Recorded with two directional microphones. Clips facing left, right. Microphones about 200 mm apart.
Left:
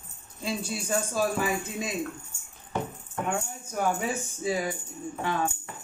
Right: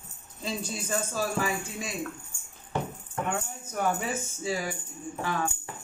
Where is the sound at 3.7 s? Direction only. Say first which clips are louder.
Left 1 dB; 15° left (ahead or behind).